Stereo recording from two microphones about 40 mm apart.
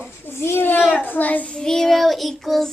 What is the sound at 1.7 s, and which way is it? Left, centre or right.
Child singing, centre.